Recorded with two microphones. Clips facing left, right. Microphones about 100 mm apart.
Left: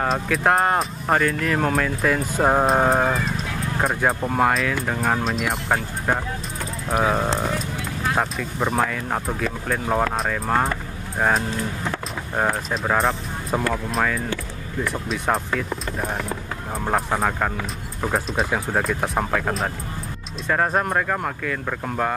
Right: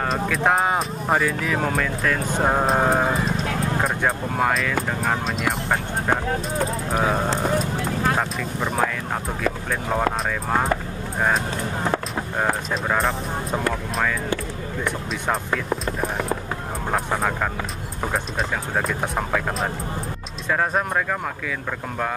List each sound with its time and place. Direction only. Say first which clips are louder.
0.0 s speech: left 1 dB; centre (ahead or behind)
7.4 s clip-clop: right 4 dB; 40° right (ahead or behind)
8.2 s speech: left 1 dB; 5° left (ahead or behind)
12.8 s speech: left 2 dB; centre (ahead or behind)
14.9 s speech: left 2 dB; centre (ahead or behind)